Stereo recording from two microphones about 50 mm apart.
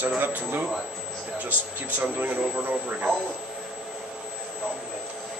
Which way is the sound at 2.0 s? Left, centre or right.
Right.